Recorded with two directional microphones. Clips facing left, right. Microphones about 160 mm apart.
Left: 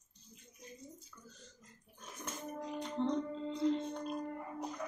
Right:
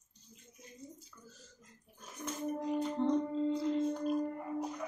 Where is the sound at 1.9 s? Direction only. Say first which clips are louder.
Right 5 dB; centre (ahead or behind).